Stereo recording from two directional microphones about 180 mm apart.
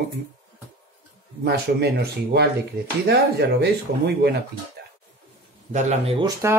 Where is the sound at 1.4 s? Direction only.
65° right (ahead or behind).